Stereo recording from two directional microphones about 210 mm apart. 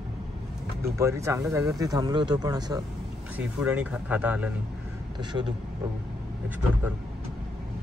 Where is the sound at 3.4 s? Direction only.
5° right (ahead or behind).